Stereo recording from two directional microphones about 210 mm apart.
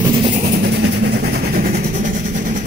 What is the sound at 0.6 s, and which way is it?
Vehicle, 55° right (ahead or behind).